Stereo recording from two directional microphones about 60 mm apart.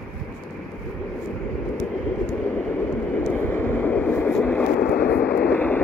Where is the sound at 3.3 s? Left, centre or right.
Left.